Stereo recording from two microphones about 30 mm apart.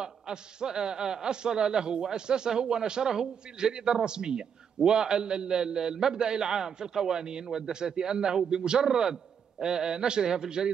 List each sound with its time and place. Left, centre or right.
0.0 s a man's voice: right